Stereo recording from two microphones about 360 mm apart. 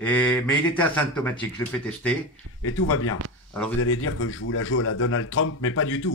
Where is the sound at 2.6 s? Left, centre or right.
Left.